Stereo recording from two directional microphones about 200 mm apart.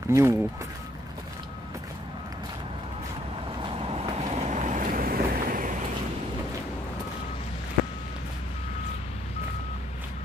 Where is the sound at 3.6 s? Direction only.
25° right (ahead or behind); by 5.7 s 45° right (ahead or behind).